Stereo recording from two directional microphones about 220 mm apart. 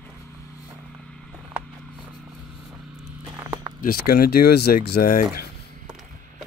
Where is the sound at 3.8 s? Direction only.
40° left (ahead or behind).